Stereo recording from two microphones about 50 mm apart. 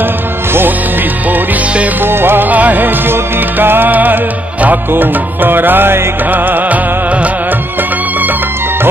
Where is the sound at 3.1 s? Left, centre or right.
Right.